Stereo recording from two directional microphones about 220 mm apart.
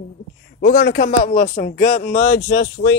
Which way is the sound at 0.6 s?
50° left (ahead or behind).